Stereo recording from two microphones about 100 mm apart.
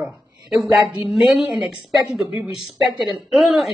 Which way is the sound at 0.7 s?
5° right (ahead or behind).